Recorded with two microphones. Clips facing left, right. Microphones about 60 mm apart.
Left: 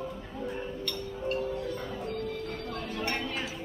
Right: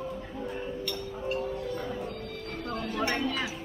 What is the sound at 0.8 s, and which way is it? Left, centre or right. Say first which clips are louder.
Music: even; centre.